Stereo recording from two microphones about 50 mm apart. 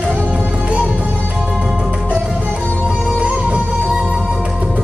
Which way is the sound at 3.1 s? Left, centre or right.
Right.